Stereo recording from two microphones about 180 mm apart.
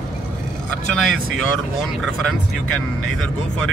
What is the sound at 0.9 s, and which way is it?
Speech, 5° left (ahead or behind).